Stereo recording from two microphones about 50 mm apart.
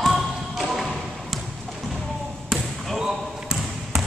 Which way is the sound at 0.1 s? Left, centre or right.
Centre.